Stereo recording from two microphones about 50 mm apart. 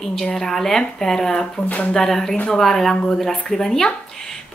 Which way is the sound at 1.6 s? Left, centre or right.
Left.